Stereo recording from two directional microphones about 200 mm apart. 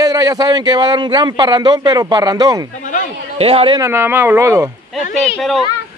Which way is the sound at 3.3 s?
30° right (ahead or behind).